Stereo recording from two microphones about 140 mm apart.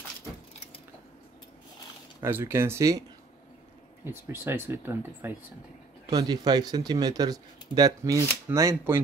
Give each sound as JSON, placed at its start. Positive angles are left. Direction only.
{"t": 2.1, "sound": "speech", "side_deg": -15}
{"t": 6.0, "sound": "speech", "side_deg": -30}